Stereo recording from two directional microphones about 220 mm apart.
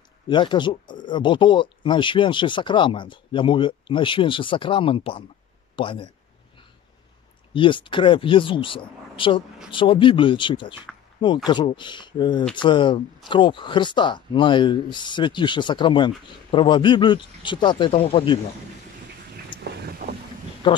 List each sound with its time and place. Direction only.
0.3 s speech: 20° left (ahead or behind)
7.5 s speech: 20° left (ahead or behind)
19.5 s vehicle: 20° left (ahead or behind)
20.6 s speech: 20° left (ahead or behind)